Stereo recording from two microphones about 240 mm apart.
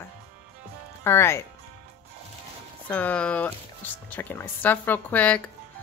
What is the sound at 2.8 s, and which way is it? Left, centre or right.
A woman's voice, centre.